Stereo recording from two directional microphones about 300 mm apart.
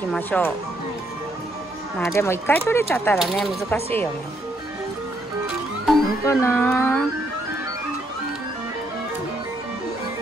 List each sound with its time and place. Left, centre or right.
0.1 s speech: centre
2.0 s speech: centre
5.9 s music: centre